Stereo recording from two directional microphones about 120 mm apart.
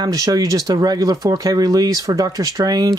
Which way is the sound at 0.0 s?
30° right (ahead or behind).